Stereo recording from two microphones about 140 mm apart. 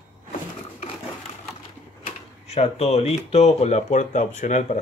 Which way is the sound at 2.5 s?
45° left (ahead or behind).